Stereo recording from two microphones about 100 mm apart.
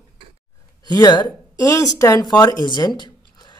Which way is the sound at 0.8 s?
45° left (ahead or behind).